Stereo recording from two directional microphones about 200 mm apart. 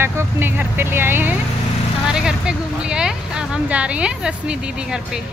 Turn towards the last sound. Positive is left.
turn(degrees=-5)  # may be behind; listen again after turning